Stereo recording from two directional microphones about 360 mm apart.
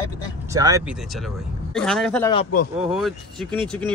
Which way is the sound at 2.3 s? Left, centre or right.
Left.